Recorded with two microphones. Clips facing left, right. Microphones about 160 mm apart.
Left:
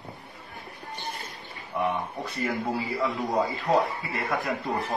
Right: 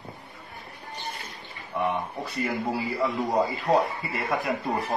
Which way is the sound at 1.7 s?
5° left (ahead or behind).